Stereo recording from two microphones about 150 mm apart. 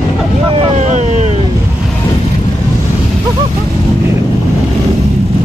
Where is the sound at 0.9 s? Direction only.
50° right (ahead or behind).